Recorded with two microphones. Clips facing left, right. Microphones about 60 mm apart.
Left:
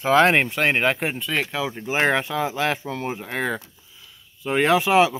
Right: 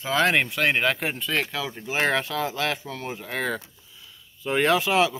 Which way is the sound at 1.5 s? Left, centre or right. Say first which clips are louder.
Left 4 dB; left.